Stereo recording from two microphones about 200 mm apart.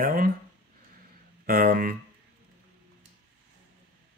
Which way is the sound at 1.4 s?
45° right (ahead or behind).